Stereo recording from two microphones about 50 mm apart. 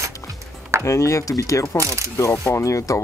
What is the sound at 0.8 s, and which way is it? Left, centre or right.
Speech, left.